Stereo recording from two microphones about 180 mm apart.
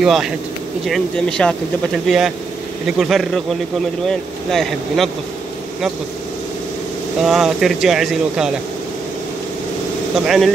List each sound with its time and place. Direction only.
0.0 s speech: centre (ahead or behind)
7.2 s speech: centre (ahead or behind)
10.2 s speech: centre (ahead or behind)